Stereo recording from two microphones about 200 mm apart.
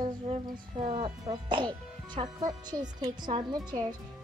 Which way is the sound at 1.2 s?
25° right (ahead or behind).